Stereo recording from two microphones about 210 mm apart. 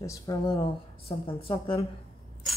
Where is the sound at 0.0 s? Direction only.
15° left (ahead or behind).